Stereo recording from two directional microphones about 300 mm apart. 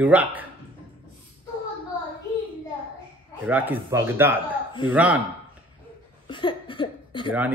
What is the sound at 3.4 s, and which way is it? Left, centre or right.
A man's voice, centre.